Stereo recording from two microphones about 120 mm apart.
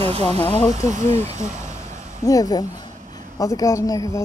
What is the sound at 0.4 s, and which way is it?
Speech, 30° left (ahead or behind).